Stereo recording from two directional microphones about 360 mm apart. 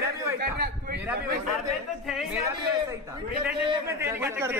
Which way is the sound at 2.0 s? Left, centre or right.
Centre.